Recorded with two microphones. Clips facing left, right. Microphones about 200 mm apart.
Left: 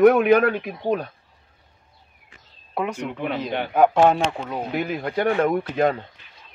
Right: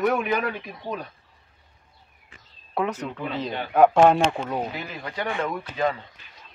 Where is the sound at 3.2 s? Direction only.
65° left (ahead or behind).